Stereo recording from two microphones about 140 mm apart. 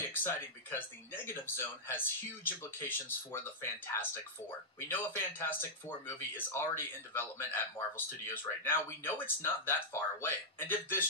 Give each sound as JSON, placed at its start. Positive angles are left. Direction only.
{"t": 0.1, "sound": "speech", "side_deg": 15}